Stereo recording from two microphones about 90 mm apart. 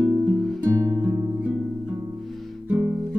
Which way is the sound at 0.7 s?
30° right (ahead or behind).